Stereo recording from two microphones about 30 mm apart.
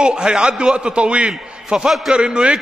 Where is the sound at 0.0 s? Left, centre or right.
Right.